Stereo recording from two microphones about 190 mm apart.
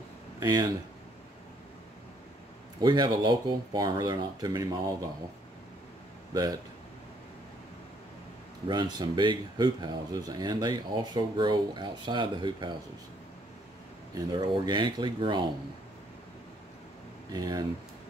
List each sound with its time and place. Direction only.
0.4 s speech: 15° right (ahead or behind)
2.8 s speech: 20° right (ahead or behind)
8.6 s speech: 20° right (ahead or behind)
14.1 s speech: 25° right (ahead or behind)
17.3 s speech: 20° right (ahead or behind)